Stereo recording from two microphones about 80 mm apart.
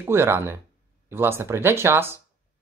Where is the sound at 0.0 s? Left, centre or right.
Right.